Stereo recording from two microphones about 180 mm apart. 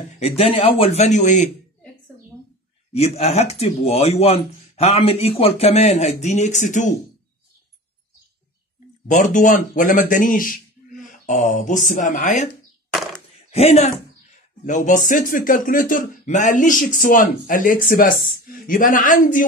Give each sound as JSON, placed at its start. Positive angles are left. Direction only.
{"t": 0.2, "sound": "speech", "side_deg": 35}
{"t": 2.9, "sound": "speech", "side_deg": 35}
{"t": 9.0, "sound": "speech", "side_deg": 45}
{"t": 12.9, "sound": "a sound", "side_deg": 0}
{"t": 13.5, "sound": "speech", "side_deg": 35}